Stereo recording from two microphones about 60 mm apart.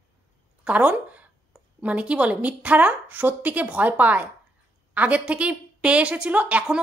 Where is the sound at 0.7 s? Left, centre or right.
Right.